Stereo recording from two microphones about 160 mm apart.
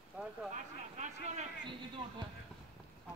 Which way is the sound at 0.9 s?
50° right (ahead or behind).